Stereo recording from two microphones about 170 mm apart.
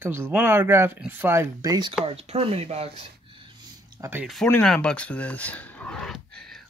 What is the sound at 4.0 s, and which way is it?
Speech, 10° right (ahead or behind).